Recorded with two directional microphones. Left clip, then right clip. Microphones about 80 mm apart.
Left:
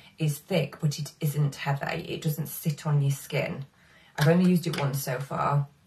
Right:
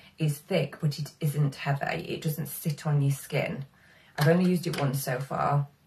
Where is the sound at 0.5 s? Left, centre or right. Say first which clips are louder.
Even; centre.